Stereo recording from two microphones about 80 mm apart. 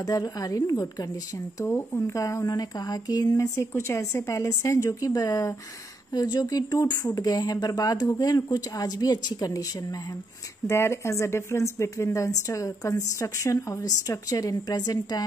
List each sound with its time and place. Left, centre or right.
0.0 s speech: left
1.7 s speech: left
3.3 s speech: left
10.7 s speech: left